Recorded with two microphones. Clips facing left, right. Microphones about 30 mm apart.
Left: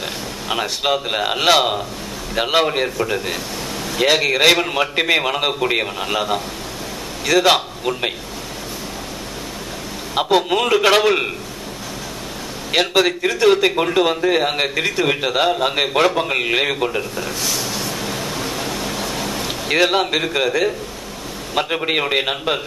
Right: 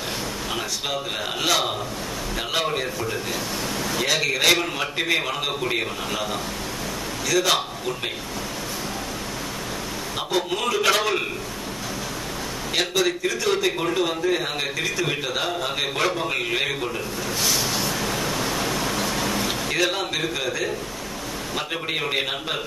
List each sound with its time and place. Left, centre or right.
0.5 s a man's voice: left
4.6 s a man's voice: left
7.5 s a man's voice: left
10.1 s speech: left
11.0 s a man's voice: left
12.7 s a man's voice: left
17.5 s vehicle: centre
18.1 s a sound: centre
19.7 s a man's voice: left